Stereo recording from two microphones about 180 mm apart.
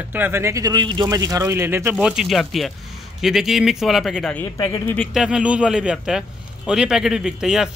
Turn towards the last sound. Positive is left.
turn(degrees=-5)  # may be behind; listen again after turning